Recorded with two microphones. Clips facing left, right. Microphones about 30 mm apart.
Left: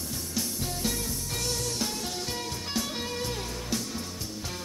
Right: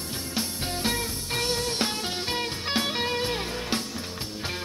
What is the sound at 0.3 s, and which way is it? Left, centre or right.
Music, right.